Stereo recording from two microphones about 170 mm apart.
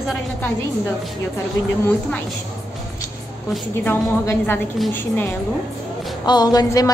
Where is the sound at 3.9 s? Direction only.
10° left (ahead or behind).